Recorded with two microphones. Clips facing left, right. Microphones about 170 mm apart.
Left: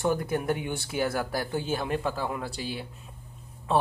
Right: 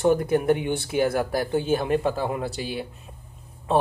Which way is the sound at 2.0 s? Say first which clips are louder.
Right 5 dB; 20° right (ahead or behind).